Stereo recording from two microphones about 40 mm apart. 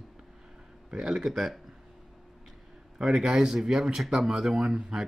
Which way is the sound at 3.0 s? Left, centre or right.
Centre.